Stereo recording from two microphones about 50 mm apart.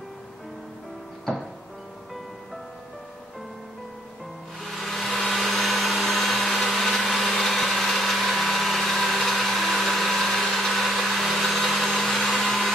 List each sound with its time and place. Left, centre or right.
4.6 s hair dryer: centre
5.3 s blender: centre
11.8 s hair dryer: centre